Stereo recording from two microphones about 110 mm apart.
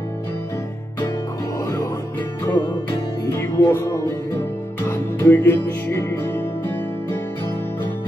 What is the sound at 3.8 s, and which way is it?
Music, 20° left (ahead or behind).